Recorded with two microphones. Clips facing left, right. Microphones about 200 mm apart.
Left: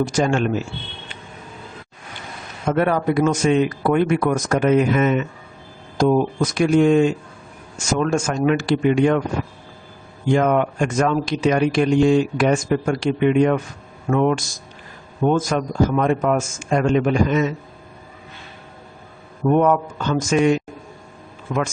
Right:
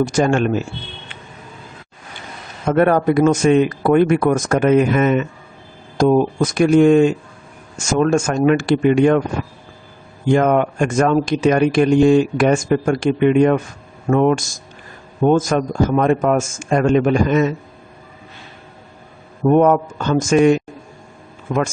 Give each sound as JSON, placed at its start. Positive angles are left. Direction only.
{"t": 0.0, "sound": "speech", "side_deg": -55}
{"t": 2.7, "sound": "speech", "side_deg": -50}
{"t": 10.3, "sound": "speech", "side_deg": -50}
{"t": 19.5, "sound": "speech", "side_deg": -45}